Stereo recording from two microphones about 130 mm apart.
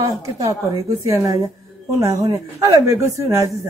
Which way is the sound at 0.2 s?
25° right (ahead or behind).